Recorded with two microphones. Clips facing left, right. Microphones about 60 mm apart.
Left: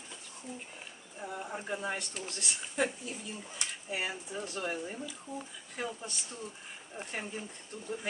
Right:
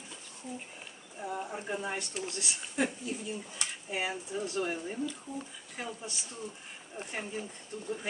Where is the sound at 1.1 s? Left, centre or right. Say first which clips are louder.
Right 2 dB; centre.